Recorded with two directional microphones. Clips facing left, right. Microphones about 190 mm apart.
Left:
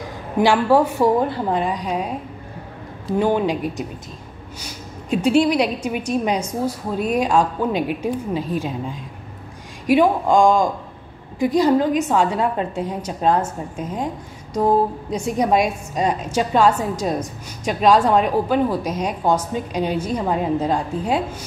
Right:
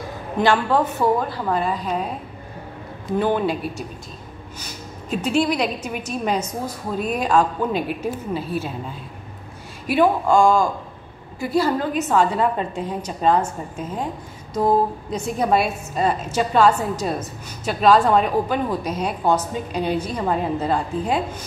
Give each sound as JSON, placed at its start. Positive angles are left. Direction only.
{"t": 0.4, "sound": "a woman's voice", "side_deg": 10}
{"t": 1.3, "sound": "a woman's voice", "side_deg": 25}
{"t": 3.2, "sound": "a woman's voice", "side_deg": 15}
{"t": 4.6, "sound": "a sound", "side_deg": 10}
{"t": 6.2, "sound": "a woman's voice", "side_deg": 10}